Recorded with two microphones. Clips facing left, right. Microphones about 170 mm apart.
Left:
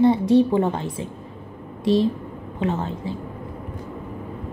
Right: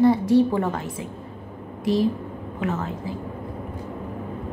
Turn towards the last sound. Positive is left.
turn(degrees=30)  # may be behind; listen again after turning